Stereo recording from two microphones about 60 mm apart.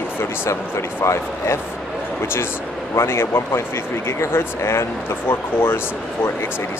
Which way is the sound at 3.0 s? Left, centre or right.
Left.